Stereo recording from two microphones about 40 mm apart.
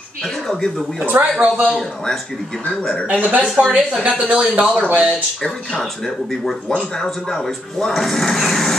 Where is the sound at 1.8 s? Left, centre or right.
Centre.